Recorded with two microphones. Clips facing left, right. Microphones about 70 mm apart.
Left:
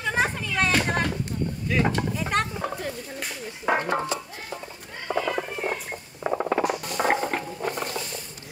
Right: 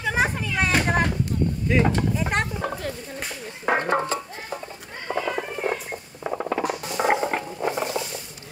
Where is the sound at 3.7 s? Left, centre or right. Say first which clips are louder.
Right 3 dB; right.